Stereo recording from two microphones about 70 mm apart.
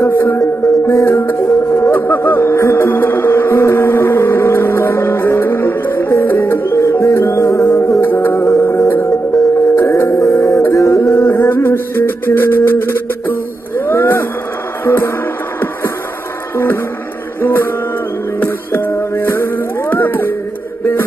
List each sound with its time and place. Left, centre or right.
0.0 s music: left
8.0 s music: left
17.4 s music: left